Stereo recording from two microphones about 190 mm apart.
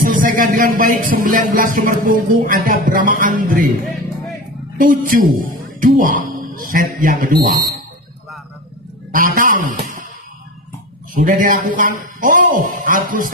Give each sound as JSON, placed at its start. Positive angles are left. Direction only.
{"t": 0.1, "sound": "speech", "side_deg": -45}
{"t": 4.7, "sound": "speech", "side_deg": -45}
{"t": 9.1, "sound": "a man's voice", "side_deg": -45}
{"t": 11.1, "sound": "speech", "side_deg": -45}